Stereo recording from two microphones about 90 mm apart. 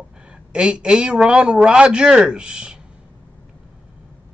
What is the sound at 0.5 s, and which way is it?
Speech, 10° right (ahead or behind).